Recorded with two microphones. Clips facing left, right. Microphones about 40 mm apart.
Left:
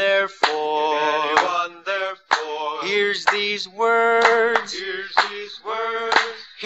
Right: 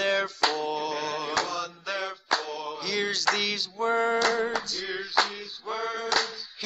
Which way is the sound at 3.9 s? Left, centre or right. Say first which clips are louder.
Left 9 dB; left.